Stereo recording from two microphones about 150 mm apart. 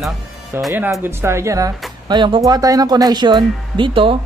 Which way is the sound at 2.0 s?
30° right (ahead or behind).